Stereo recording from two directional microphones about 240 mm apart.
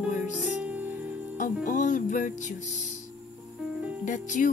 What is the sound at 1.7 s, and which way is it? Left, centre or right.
Music, left.